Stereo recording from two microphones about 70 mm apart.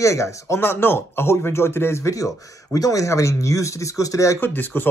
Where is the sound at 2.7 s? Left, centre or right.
Left.